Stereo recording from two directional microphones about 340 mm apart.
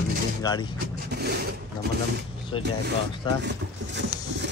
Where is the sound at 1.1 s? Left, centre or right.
Right.